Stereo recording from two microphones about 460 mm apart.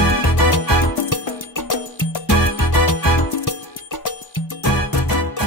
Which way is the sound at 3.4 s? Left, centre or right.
Left.